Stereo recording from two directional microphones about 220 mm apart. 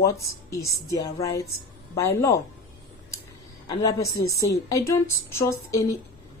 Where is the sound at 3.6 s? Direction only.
15° left (ahead or behind).